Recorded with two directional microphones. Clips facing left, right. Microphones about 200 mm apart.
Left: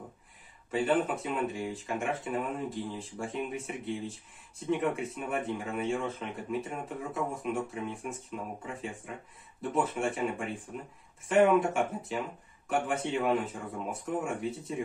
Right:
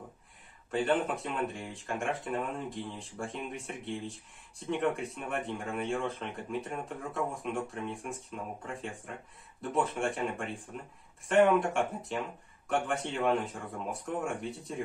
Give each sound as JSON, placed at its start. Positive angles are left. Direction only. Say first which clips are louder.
{"t": 0.7, "sound": "speech", "louder": "left 1 dB", "side_deg": 0}